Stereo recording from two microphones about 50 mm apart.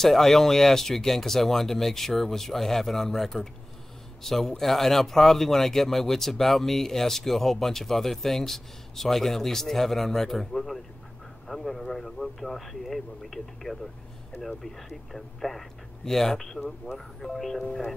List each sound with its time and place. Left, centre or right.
0.0 s a man's voice: centre